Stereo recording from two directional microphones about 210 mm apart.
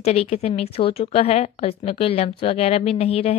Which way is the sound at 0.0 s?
30° left (ahead or behind).